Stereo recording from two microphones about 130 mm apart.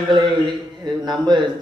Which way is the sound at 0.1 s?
35° right (ahead or behind).